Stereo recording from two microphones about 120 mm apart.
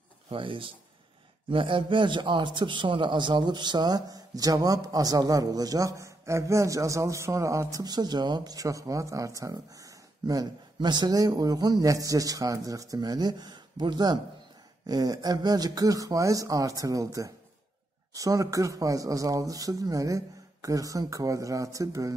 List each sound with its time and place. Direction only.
0.3 s a man's voice: 45° right (ahead or behind); by 22.1 s 30° right (ahead or behind)